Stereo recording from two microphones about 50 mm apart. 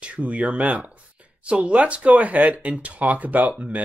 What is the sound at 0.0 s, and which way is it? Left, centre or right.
Speech, right.